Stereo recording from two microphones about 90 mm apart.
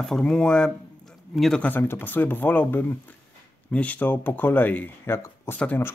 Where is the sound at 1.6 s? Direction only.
20° left (ahead or behind).